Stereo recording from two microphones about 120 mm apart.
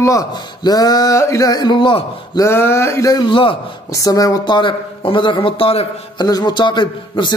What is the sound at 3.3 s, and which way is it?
Speech, 45° left (ahead or behind).